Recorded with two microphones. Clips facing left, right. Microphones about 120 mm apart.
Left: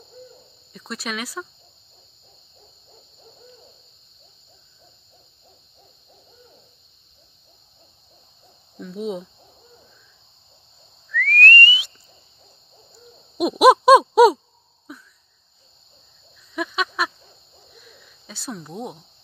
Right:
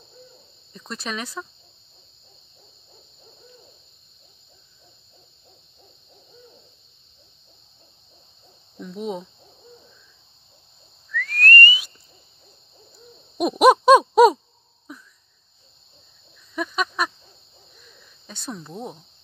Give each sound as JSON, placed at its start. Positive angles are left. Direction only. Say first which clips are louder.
{"t": 0.7, "sound": "speech", "louder": "left 1 dB", "side_deg": 5}
{"t": 8.7, "sound": "speech", "louder": "left 1 dB", "side_deg": 0}
{"t": 11.1, "sound": "whistling", "louder": "left 3 dB", "side_deg": 0}
{"t": 13.4, "sound": "a sound", "louder": "left 1 dB", "side_deg": 5}
{"t": 16.5, "sound": "fowl", "louder": "even", "side_deg": 5}
{"t": 18.2, "sound": "speech", "louder": "left 1 dB", "side_deg": 5}